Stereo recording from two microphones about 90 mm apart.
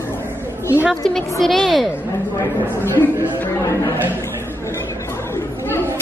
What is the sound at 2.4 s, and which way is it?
Speech, 25° left (ahead or behind).